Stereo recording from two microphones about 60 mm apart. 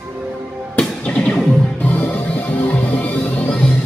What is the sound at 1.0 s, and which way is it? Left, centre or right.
Music, left.